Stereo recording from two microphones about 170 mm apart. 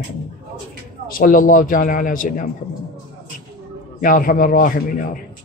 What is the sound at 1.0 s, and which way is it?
Speech, 55° left (ahead or behind).